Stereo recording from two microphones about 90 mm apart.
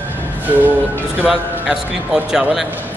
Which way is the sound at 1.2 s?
10° right (ahead or behind).